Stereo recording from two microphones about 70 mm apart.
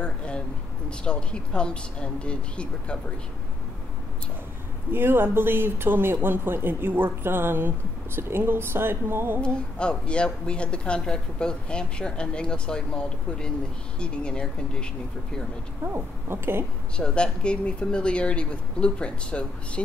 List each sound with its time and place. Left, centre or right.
0.0 s a sound: centre
0.8 s a woman's voice: centre
4.9 s speech: right
9.4 s a woman's voice: centre
15.8 s speech: right
16.9 s a woman's voice: centre